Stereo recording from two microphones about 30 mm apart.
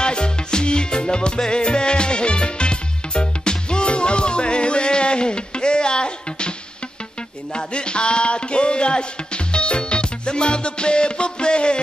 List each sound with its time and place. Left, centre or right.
0.0 s music: left
7.5 s music: left